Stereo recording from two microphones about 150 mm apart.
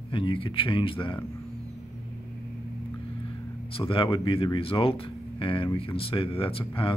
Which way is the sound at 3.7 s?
35° left (ahead or behind).